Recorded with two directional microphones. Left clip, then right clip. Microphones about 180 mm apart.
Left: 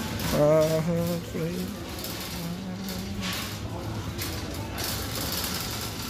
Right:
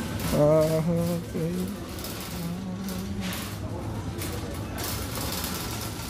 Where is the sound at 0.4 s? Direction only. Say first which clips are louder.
Even; 5° right (ahead or behind).